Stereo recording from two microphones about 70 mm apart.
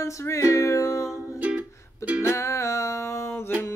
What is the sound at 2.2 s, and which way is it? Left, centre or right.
Music, left.